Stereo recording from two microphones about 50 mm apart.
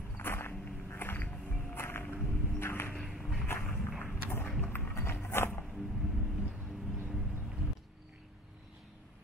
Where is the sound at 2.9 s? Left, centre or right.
Centre.